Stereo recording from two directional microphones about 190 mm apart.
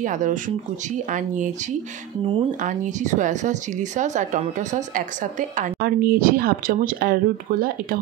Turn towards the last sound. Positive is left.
turn(degrees=-50)  # may be behind; listen again after turning